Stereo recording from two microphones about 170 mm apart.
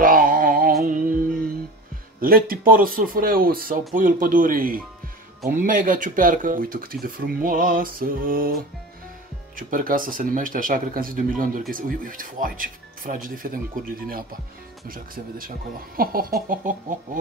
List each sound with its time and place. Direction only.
0.0 s a sound: 55° right (ahead or behind)
0.8 s music: 50° right (ahead or behind)
2.1 s speech: 60° right (ahead or behind)
9.6 s speech: 55° right (ahead or behind)